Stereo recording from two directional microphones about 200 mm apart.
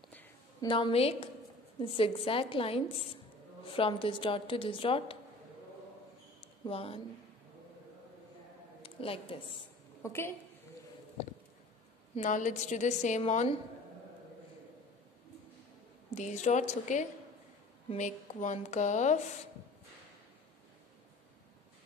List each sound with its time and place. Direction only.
0.1 s a sound: 10° left (ahead or behind)
0.7 s speech: 25° left (ahead or behind)
6.4 s a sound: 25° left (ahead or behind)
8.8 s a woman's voice: 25° left (ahead or behind)
10.0 s a woman's voice: 10° left (ahead or behind)
12.2 s a woman's voice: 40° left (ahead or behind)
16.2 s a woman's voice: 35° left (ahead or behind)